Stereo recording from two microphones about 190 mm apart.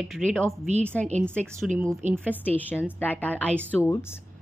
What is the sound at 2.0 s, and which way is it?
Speech, 40° right (ahead or behind).